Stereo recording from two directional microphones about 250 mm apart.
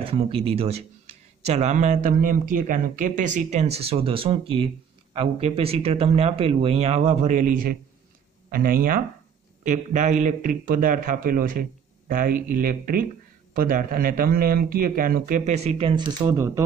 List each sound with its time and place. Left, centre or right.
0.0 s speech: right
16.3 s speech: centre